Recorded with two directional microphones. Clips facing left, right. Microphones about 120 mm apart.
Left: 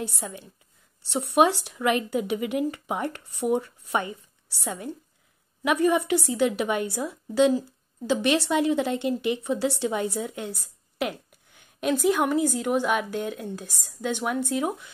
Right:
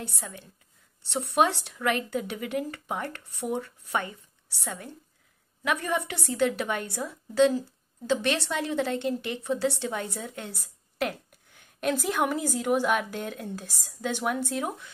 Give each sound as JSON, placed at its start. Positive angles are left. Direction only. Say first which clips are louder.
{"t": 0.0, "sound": "a woman's voice", "louder": "left 5 dB", "side_deg": 15}